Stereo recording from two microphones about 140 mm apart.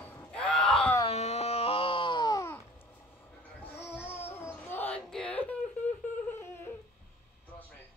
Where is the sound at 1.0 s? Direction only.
50° left (ahead or behind); by 2.5 s 30° left (ahead or behind).